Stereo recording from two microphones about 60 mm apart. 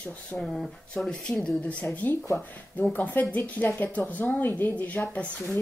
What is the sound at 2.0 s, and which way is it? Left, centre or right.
Speech, left.